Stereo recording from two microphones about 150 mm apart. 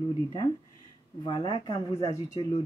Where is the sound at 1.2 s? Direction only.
35° left (ahead or behind).